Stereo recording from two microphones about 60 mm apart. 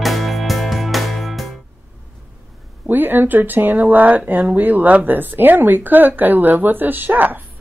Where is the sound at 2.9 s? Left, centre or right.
Right.